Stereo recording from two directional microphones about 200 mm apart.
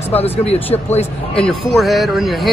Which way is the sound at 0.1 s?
30° left (ahead or behind).